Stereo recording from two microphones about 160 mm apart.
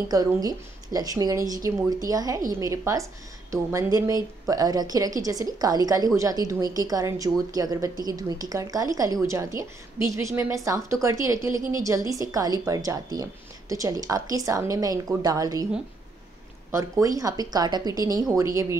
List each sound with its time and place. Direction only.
0.1 s speech: 25° right (ahead or behind)
16.7 s speech: 20° right (ahead or behind)